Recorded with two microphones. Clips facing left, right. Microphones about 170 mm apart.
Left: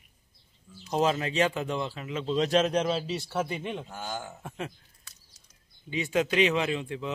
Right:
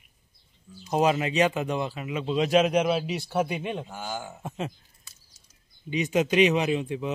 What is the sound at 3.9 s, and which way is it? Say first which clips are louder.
Speech: right 2 dB; 5° right (ahead or behind).